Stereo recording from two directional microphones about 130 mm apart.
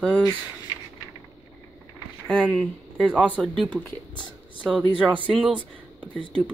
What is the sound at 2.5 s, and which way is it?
Speech, 10° left (ahead or behind).